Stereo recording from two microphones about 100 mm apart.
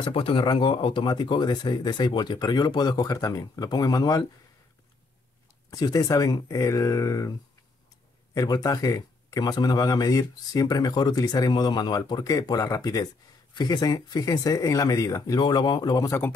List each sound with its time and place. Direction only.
0.0 s speech: 60° left (ahead or behind); by 4.2 s 40° left (ahead or behind)
5.7 s speech: 35° left (ahead or behind)
8.4 s speech: 40° left (ahead or behind)